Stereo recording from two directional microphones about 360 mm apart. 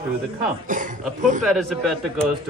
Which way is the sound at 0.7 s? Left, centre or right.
Right.